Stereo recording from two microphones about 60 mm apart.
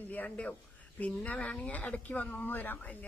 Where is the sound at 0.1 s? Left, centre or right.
Left.